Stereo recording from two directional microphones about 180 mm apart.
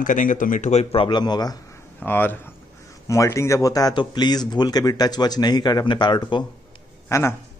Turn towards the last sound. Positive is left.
turn(degrees=15)  # may be behind; listen again after turning